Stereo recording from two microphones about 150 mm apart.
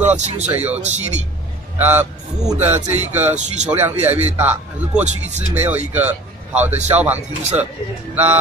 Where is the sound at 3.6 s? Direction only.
15° right (ahead or behind).